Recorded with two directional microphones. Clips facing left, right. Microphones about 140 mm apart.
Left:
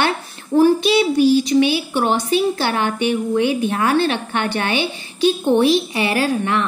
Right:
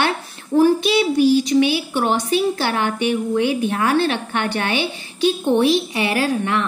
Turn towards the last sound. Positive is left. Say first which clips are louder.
# left 1 dB
turn(degrees=35)  # may be behind; listen again after turning